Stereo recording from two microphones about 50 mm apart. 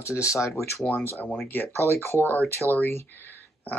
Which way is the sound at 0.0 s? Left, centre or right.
Left.